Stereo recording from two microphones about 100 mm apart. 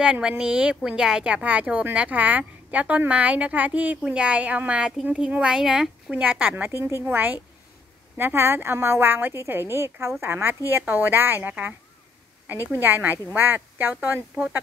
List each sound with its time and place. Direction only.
0.0 s speech: 10° right (ahead or behind)